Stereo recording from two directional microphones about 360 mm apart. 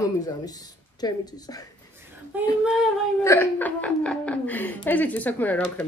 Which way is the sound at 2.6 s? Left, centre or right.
Centre.